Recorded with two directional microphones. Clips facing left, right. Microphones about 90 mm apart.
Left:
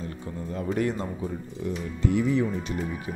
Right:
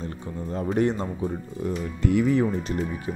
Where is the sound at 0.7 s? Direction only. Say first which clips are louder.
Right 5 dB; 25° right (ahead or behind).